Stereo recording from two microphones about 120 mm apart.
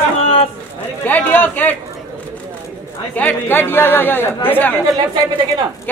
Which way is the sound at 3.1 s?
15° left (ahead or behind).